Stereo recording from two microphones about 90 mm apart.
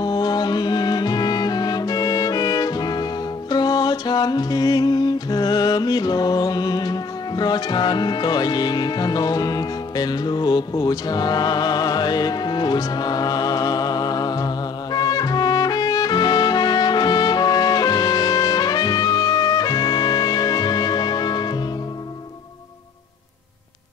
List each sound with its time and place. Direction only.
0.0 s music: 50° left (ahead or behind)